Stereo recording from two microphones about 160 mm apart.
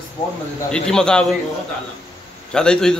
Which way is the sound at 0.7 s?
5° left (ahead or behind).